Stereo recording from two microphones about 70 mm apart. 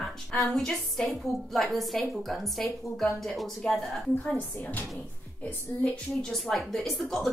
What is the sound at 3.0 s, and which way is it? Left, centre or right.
Speech, centre.